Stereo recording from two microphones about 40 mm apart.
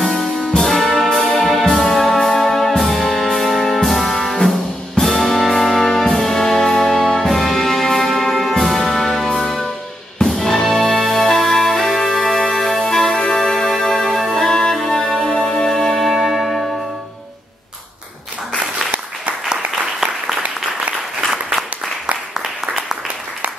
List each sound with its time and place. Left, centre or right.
0.6 s brass instrument: centre
1.8 s music: centre
12.8 s music: centre
14.5 s music: centre